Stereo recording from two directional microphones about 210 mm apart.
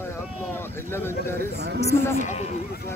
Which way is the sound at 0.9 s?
10° left (ahead or behind).